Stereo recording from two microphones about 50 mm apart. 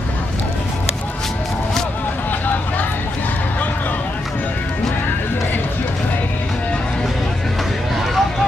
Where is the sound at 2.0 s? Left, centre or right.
Left.